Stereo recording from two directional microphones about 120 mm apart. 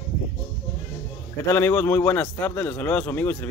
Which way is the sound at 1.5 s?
20° left (ahead or behind).